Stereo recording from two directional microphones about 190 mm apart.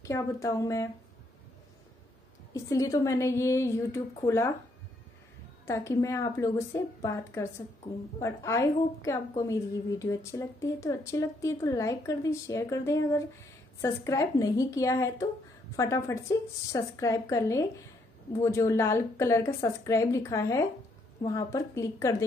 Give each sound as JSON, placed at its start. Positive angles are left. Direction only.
{"t": 0.0, "sound": "a woman's voice", "side_deg": 15}
{"t": 2.5, "sound": "a woman's voice", "side_deg": 15}
{"t": 5.7, "sound": "a woman's voice", "side_deg": 15}